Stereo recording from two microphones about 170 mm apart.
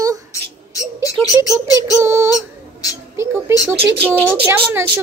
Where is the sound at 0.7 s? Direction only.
20° left (ahead or behind).